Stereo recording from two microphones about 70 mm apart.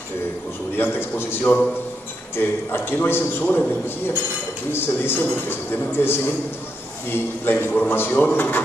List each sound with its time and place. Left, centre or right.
0.7 s a man's voice: left
1.4 s speech: centre
2.3 s a man's voice: left
4.7 s a man's voice: left
7.4 s speech: left